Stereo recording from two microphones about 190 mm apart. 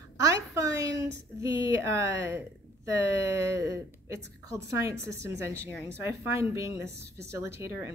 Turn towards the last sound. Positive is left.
turn(degrees=-15)  # may be behind; listen again after turning